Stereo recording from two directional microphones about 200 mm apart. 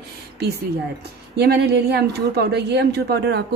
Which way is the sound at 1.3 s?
55° right (ahead or behind).